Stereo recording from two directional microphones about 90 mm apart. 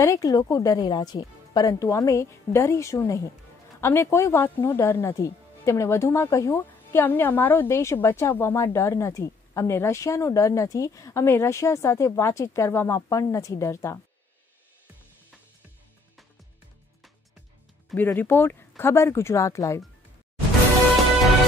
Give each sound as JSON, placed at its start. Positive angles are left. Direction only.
{"t": 0.0, "sound": "a woman's voice", "side_deg": 40}
{"t": 6.5, "sound": "a woman's voice", "side_deg": 20}
{"t": 17.9, "sound": "a woman's voice", "side_deg": 20}